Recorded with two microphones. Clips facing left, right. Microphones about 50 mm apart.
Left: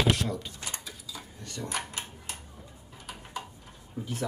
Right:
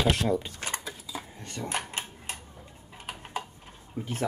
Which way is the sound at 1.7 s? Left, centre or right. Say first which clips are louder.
Right 2 dB; right.